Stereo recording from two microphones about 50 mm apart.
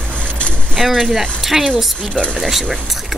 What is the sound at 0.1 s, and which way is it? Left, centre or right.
Vehicle, left.